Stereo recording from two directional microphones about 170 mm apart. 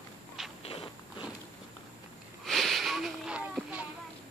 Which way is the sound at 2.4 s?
Centre (ahead or behind).